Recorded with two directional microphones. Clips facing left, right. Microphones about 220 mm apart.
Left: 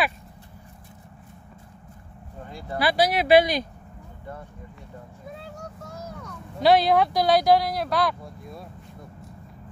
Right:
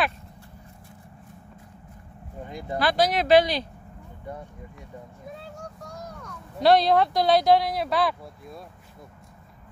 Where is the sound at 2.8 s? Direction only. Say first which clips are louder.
Left 1 dB; 5° left (ahead or behind).